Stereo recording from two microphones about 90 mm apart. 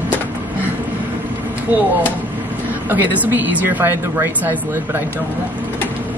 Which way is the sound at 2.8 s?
20° right (ahead or behind).